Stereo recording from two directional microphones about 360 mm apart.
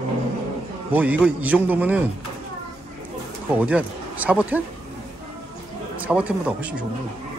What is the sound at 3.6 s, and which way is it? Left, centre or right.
Speech, centre.